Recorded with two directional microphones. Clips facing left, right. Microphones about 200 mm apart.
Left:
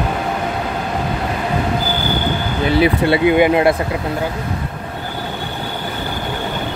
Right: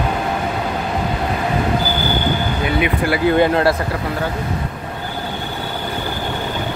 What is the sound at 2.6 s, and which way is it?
Speech, 30° left (ahead or behind).